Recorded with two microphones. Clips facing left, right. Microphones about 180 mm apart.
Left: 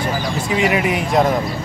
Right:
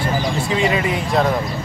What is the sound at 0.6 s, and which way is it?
Speech, 15° left (ahead or behind).